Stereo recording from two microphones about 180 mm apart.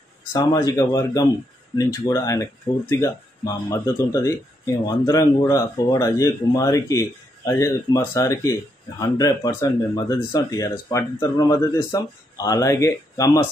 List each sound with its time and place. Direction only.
0.3 s speech: 25° left (ahead or behind)